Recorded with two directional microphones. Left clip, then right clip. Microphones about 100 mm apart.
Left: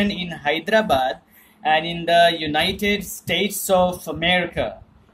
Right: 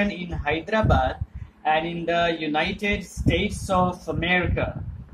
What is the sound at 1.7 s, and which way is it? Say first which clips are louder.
Speech: left 5 dB; 45° left (ahead or behind).